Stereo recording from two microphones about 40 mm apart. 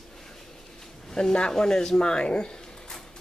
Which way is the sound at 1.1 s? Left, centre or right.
Centre.